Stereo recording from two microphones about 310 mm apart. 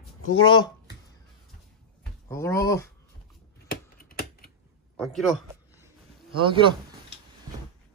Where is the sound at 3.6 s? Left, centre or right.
Left.